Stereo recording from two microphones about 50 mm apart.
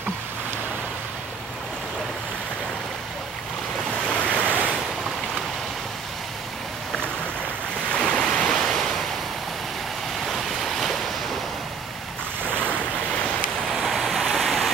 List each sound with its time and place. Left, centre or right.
4.1 s waves: left
8.0 s waves: centre
10.2 s waves: centre
12.4 s waves: left
13.7 s rain: centre